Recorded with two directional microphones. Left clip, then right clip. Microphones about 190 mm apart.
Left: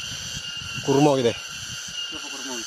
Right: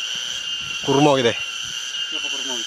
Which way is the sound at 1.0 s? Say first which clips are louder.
Right 3 dB; 5° left (ahead or behind).